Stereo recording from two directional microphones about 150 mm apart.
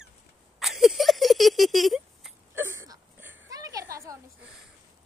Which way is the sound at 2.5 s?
15° right (ahead or behind).